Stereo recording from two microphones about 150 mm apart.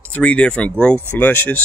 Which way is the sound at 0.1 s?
10° left (ahead or behind).